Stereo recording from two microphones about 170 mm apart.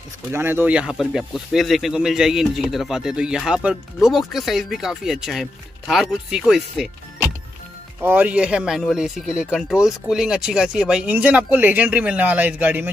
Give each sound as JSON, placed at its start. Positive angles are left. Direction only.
{"t": 0.3, "sound": "speech", "side_deg": -15}
{"t": 8.0, "sound": "speech", "side_deg": -10}